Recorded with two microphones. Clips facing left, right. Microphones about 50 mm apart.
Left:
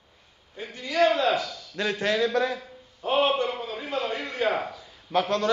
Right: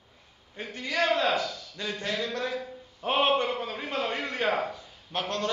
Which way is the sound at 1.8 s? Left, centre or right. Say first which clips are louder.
Left 7 dB; left.